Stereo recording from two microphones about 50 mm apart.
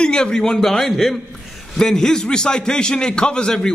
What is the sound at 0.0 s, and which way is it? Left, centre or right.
A man's voice, centre.